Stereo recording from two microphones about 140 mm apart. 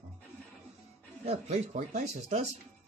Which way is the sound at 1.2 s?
55° right (ahead or behind).